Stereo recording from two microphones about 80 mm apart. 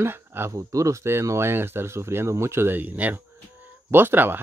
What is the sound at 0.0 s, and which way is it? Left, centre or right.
Speech, right.